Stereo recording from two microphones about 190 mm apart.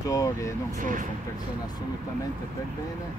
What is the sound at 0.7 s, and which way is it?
Speech, 45° right (ahead or behind).